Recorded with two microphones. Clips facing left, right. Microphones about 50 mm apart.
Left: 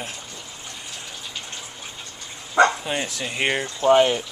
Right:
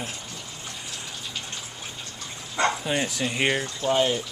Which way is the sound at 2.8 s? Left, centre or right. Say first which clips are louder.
Right 1 dB; centre.